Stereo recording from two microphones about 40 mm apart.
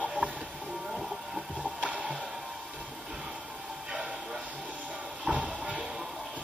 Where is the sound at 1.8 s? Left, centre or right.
Right.